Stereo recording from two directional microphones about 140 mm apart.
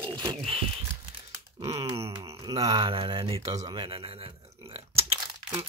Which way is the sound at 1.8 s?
45° right (ahead or behind).